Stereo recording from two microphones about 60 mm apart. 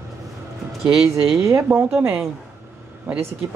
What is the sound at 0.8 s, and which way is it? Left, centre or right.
Speech, centre.